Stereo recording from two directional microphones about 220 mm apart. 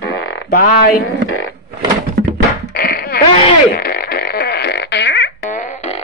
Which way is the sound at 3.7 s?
45° left (ahead or behind).